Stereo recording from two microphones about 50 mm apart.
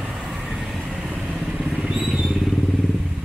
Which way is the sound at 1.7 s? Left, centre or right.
Centre.